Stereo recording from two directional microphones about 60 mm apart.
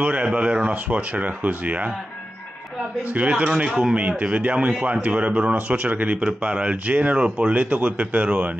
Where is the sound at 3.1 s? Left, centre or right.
Right.